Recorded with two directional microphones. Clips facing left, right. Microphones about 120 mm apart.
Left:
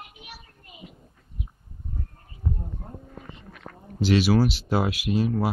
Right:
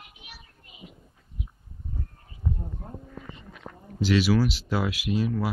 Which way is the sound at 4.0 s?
60° left (ahead or behind).